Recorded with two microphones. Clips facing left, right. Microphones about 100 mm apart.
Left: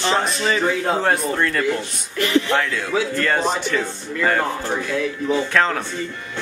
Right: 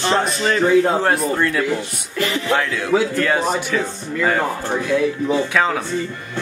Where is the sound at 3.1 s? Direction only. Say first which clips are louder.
Right 2 dB; 5° right (ahead or behind).